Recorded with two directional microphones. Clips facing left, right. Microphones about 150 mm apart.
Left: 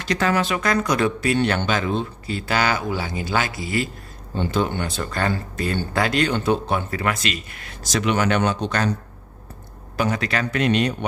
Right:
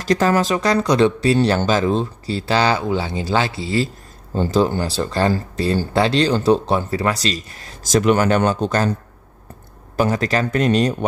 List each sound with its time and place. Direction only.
0.0 s speech: 40° right (ahead or behind)
9.9 s speech: 40° right (ahead or behind)